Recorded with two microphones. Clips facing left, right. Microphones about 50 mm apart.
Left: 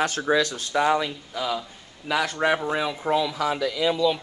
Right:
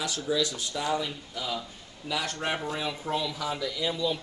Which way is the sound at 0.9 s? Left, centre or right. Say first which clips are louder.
Left 5 dB; left.